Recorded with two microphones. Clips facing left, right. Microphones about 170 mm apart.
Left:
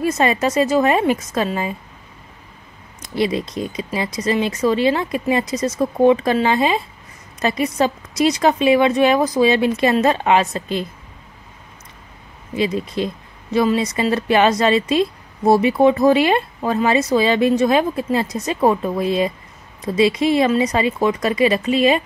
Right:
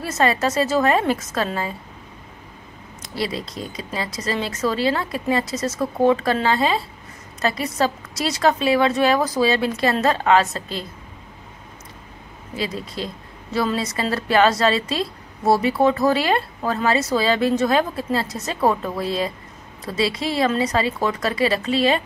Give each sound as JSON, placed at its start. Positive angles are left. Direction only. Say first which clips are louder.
{"t": 0.0, "sound": "a woman's voice", "louder": "left 3 dB", "side_deg": 15}
{"t": 3.2, "sound": "a woman's voice", "louder": "left 6 dB", "side_deg": 20}
{"t": 12.5, "sound": "a woman's voice", "louder": "left 7 dB", "side_deg": 20}